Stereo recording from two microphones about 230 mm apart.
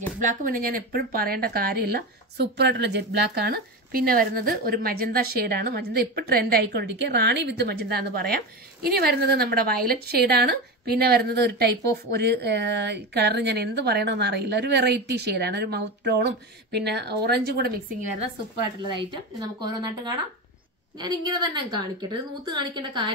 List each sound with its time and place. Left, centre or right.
0.2 s speech: right
18.9 s a woman's voice: centre